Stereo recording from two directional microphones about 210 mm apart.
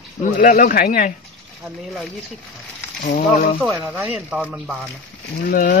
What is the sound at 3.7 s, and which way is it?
Speech, 10° right (ahead or behind).